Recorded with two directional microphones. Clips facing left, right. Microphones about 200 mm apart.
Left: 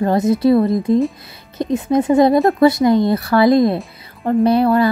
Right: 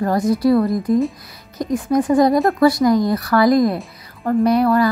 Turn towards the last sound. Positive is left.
turn(degrees=25)  # may be behind; listen again after turning